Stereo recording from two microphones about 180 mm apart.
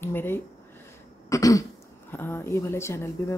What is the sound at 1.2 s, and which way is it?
Throat clearing, 20° left (ahead or behind).